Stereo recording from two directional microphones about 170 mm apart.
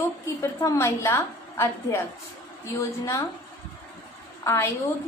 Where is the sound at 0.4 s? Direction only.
15° left (ahead or behind).